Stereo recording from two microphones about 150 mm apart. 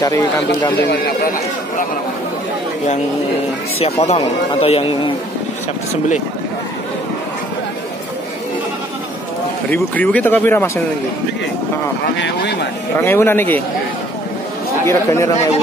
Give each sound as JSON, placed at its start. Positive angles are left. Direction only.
{"t": 0.0, "sound": "speech", "side_deg": 25}
{"t": 0.8, "sound": "speech", "side_deg": 90}
{"t": 3.8, "sound": "speech", "side_deg": 45}
{"t": 9.7, "sound": "speech", "side_deg": 10}
{"t": 12.3, "sound": "speech", "side_deg": 90}
{"t": 13.0, "sound": "speech", "side_deg": 15}
{"t": 14.9, "sound": "speech", "side_deg": 20}